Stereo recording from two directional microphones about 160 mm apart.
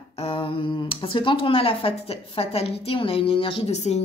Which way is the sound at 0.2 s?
35° left (ahead or behind).